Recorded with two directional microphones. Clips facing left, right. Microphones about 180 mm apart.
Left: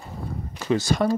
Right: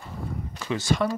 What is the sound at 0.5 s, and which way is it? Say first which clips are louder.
Speech: left 3 dB; 40° left (ahead or behind).